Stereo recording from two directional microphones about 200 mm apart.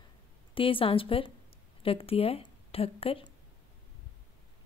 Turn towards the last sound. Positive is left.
turn(degrees=30)  # may be behind; listen again after turning